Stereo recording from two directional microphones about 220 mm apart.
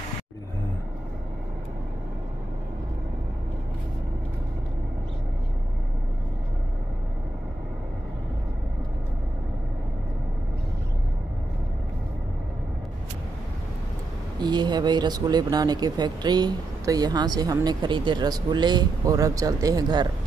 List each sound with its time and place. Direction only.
14.4 s speech: 20° right (ahead or behind)